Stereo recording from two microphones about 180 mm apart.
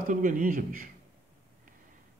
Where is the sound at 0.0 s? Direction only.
45° right (ahead or behind).